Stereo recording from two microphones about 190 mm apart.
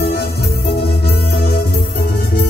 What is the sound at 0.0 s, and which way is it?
Music, 55° left (ahead or behind).